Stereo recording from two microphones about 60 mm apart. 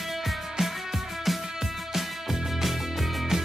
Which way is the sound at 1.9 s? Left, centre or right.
Centre.